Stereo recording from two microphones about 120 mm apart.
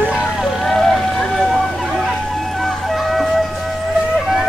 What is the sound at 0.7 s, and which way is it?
Vehicle, centre (ahead or behind).